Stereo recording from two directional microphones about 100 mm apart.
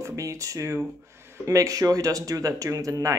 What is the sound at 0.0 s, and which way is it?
Speech, 30° right (ahead or behind).